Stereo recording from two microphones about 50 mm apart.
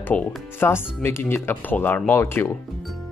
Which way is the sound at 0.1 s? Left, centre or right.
Left.